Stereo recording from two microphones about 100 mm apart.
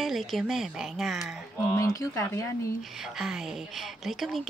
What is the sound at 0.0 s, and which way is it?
Speech, centre (ahead or behind).